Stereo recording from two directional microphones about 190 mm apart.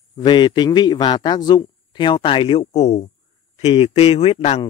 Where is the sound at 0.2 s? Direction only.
25° left (ahead or behind).